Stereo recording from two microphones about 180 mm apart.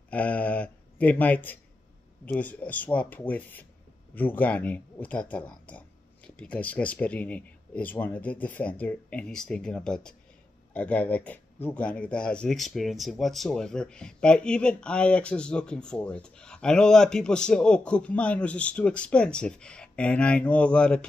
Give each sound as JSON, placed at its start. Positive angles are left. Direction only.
{"t": 0.1, "sound": "speech", "side_deg": 10}